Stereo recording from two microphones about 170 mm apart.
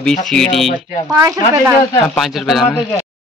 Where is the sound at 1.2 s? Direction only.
20° right (ahead or behind).